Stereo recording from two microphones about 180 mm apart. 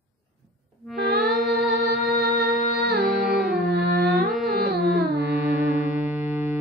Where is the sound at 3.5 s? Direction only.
65° right (ahead or behind).